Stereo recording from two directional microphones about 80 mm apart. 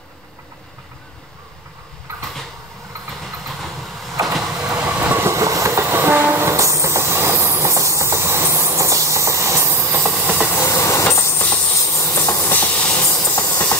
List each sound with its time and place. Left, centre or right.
3.2 s train: centre
4.3 s vehicle: centre
4.7 s train: centre
5.3 s train: right
10.5 s train: left
11.4 s a sound: left
11.7 s a sound: left
12.4 s hiss: left
13.0 s train: left